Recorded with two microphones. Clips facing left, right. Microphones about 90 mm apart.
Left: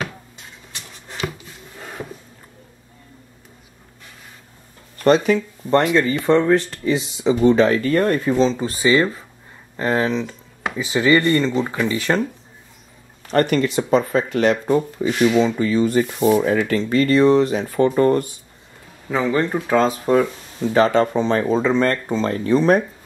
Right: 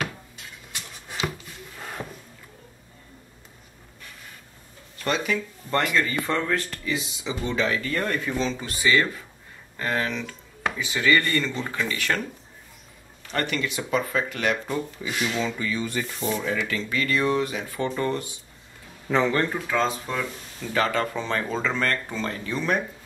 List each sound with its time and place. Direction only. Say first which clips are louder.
0.7 s a sound: left 1 dB; 15° right (ahead or behind)
1.8 s a sound: left 3 dB; 5° left (ahead or behind)
4.9 s speech: left 11 dB; 40° left (ahead or behind)
6.8 s speech: left 9 dB; 35° left (ahead or behind)
13.3 s speech: left 10 dB; 45° left (ahead or behind)
15.4 s speech: left 10 dB; 35° left (ahead or behind)
19.0 s speech: left 1 dB; 5° left (ahead or behind)
20.1 s speech: left 13 dB; 45° left (ahead or behind)
20.6 s speech: left 9 dB; 25° left (ahead or behind)
22.0 s speech: left 9 dB; 30° left (ahead or behind)